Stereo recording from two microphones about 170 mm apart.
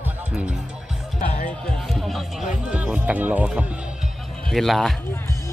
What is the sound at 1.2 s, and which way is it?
Music, 50° left (ahead or behind).